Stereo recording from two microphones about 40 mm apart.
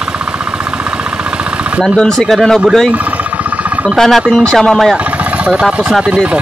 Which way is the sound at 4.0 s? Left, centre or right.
Centre.